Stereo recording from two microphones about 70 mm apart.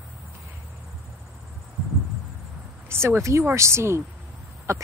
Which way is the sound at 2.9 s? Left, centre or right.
Right.